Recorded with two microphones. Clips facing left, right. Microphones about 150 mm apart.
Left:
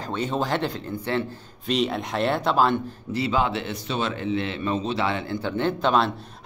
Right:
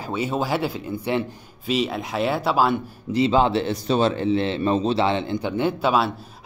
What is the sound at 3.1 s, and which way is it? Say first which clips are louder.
A man's voice: right 5 dB; 25° right (ahead or behind).